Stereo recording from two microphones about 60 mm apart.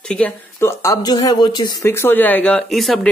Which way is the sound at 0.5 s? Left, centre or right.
Left.